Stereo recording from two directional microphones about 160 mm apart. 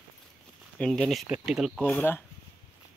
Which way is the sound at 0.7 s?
5° left (ahead or behind).